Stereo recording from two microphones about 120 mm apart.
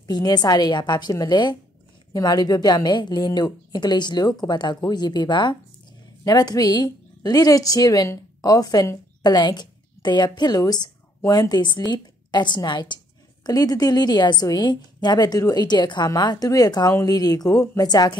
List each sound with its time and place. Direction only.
0.0 s a woman's voice: 35° left (ahead or behind)